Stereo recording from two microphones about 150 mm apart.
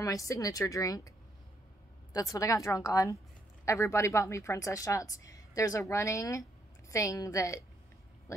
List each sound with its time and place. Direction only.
0.0 s speech: 20° left (ahead or behind)
2.1 s speech: 25° left (ahead or behind)